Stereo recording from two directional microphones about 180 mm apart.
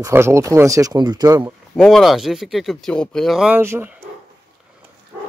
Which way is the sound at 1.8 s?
Centre (ahead or behind).